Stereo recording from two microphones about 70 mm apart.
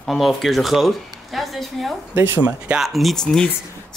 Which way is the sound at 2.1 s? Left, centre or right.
Right.